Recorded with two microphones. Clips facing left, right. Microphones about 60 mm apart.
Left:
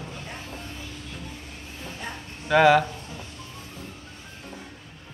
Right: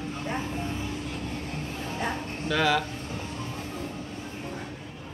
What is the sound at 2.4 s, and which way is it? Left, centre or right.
Speech, left.